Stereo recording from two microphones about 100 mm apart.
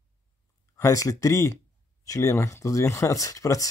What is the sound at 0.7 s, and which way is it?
Speech, 35° left (ahead or behind).